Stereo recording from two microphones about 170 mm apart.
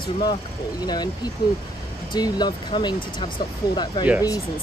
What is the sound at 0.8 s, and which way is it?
Speech, 25° left (ahead or behind).